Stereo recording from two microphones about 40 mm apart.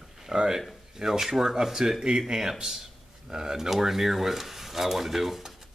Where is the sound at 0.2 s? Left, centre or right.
Centre.